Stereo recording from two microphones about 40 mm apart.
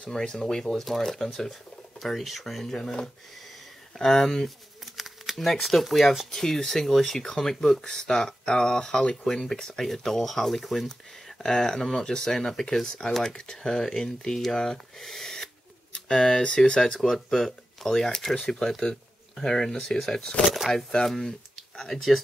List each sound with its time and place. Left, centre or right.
0.1 s speech: centre
3.9 s speech: centre
4.9 s speech: centre
20.4 s speech: centre
21.7 s speech: centre